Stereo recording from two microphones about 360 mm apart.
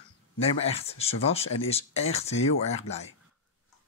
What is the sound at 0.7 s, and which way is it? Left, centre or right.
Speech, centre.